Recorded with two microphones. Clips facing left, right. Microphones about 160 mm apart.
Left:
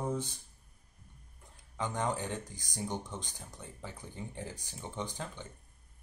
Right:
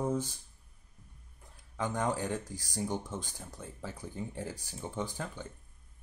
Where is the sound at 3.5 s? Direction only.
10° right (ahead or behind).